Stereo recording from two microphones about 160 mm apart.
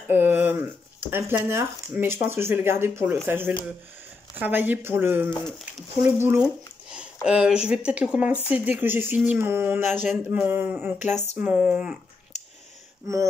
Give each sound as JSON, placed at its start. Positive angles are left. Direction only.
{"t": 0.1, "sound": "speech", "side_deg": -10}
{"t": 5.8, "sound": "speech", "side_deg": 0}
{"t": 11.1, "sound": "a sound", "side_deg": 45}
{"t": 11.3, "sound": "speech", "side_deg": -10}